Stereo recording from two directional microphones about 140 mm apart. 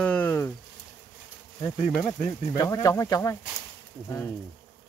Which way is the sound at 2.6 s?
25° left (ahead or behind).